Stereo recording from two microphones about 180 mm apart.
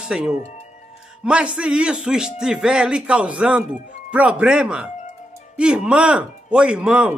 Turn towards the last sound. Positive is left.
turn(degrees=-5)  # may be behind; listen again after turning